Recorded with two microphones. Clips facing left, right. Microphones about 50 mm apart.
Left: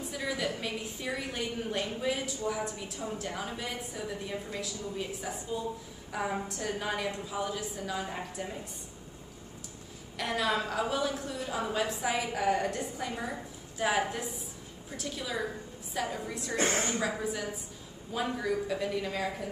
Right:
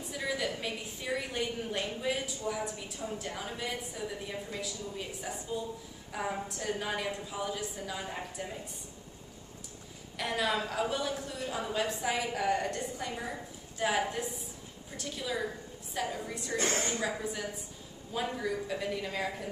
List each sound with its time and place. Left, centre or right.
0.0 s a woman's voice: centre
10.1 s a woman's voice: centre
16.5 s a woman's voice: left
17.1 s a woman's voice: centre